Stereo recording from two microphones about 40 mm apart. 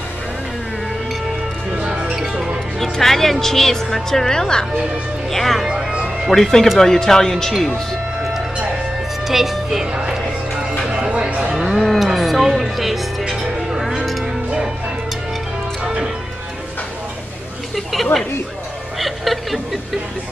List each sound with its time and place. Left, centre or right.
1.7 s music: centre
2.1 s music: centre
2.8 s speech: centre
5.3 s speech: centre
5.7 s music: centre
6.3 s speech: centre
9.3 s speech: centre
10.9 s music: right
11.5 s cattle: centre
11.8 s music: centre
15.8 s music: right
18.9 s snicker: centre